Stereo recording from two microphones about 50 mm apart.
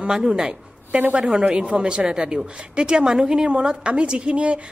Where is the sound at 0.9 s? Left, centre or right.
Right.